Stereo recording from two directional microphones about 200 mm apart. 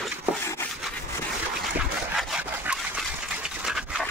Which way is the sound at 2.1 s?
5° right (ahead or behind).